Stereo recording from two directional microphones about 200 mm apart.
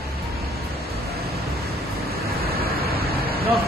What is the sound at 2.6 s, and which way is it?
Vehicle, 50° right (ahead or behind).